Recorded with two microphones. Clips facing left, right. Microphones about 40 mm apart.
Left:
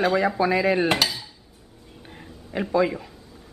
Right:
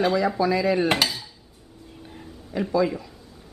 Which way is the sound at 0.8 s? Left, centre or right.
Centre.